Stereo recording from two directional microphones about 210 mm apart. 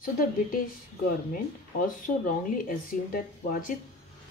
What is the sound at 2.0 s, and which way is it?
Speech, 40° left (ahead or behind).